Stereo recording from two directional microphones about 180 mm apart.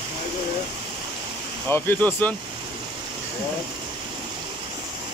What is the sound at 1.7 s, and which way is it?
Speech, 10° left (ahead or behind).